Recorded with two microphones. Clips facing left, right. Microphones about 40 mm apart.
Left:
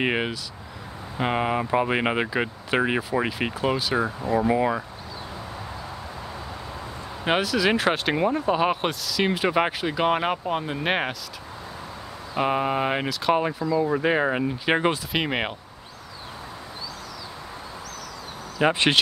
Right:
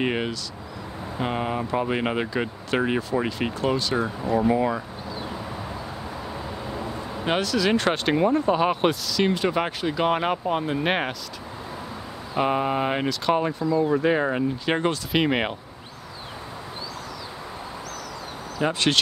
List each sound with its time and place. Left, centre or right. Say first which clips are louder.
0.0 s speech: left 1 dB; centre
7.2 s speech: left 1 dB; centre
12.4 s speech: even; centre
15.1 s speech: right 3 dB; centre
18.6 s speech: left 2 dB; left